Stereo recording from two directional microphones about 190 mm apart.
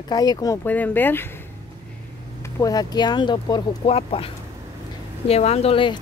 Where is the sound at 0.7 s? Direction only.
10° left (ahead or behind).